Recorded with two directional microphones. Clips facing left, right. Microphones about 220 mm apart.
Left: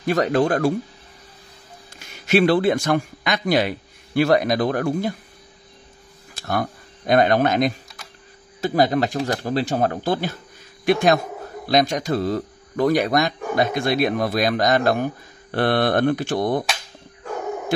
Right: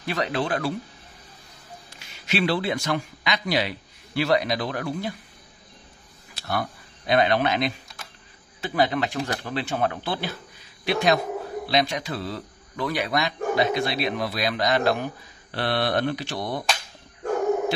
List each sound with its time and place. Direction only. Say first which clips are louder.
0.0 s speech: left 8 dB; 45° left (ahead or behind)
2.0 s speech: left 8 dB; 50° left (ahead or behind)
6.3 s speech: left 4 dB; 45° left (ahead or behind)